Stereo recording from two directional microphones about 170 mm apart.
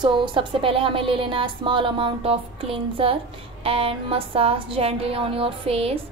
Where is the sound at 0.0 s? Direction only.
30° right (ahead or behind).